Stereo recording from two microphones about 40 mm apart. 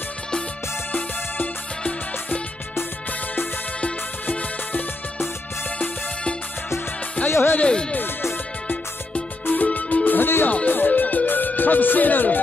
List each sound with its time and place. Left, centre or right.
4.3 s music: left
7.2 s music: left
9.5 s music: left